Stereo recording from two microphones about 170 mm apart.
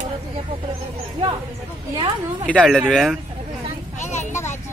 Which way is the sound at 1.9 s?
30° right (ahead or behind).